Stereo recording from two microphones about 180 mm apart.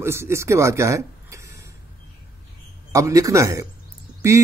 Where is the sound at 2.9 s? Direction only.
20° right (ahead or behind).